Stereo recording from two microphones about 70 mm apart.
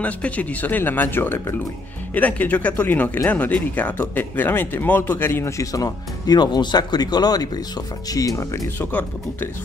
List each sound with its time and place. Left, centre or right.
0.0 s speech: centre
5.6 s speech: left